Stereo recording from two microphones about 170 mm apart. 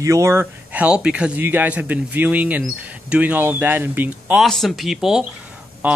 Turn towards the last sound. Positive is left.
turn(degrees=-10)  # may be behind; listen again after turning